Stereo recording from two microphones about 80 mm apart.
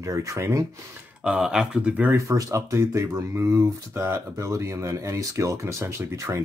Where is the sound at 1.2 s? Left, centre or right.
Centre.